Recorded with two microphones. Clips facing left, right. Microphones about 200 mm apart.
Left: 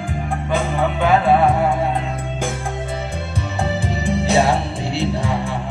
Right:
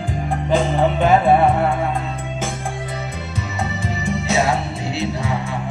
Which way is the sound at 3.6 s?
30° left (ahead or behind).